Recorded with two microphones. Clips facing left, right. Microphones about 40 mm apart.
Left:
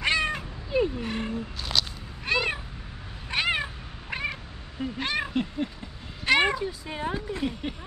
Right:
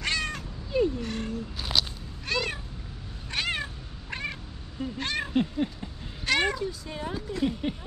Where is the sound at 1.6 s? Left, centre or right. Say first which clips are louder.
Right 1 dB; centre.